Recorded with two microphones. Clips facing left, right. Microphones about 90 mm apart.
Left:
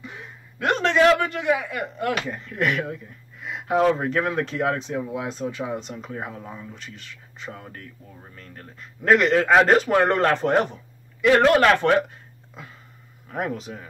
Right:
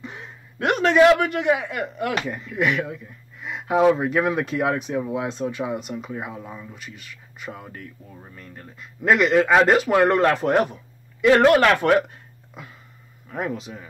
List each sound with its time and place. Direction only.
0.0 s a sound: 20° right (ahead or behind)
0.7 s speech: 15° right (ahead or behind)
2.3 s speech: centre (ahead or behind)
6.8 s a man's voice: 10° right (ahead or behind)
11.1 s a man's voice: 15° right (ahead or behind)
13.3 s a man's voice: centre (ahead or behind)